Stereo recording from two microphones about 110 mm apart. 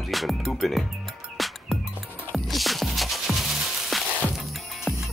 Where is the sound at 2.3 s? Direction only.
Centre (ahead or behind).